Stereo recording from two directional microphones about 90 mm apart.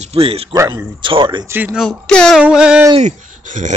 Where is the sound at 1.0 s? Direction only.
60° right (ahead or behind).